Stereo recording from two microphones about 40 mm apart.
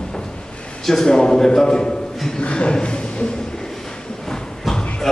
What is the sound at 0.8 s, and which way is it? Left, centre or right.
A man's voice, centre.